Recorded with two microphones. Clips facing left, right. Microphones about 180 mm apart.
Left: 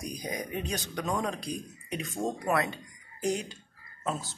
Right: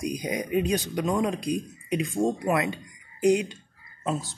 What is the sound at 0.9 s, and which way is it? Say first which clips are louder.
Speech: right 4 dB; 10° right (ahead or behind).